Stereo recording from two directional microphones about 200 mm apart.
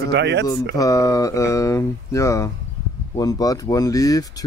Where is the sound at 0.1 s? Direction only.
60° right (ahead or behind).